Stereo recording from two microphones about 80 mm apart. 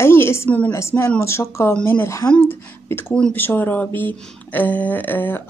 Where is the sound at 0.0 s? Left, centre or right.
Left.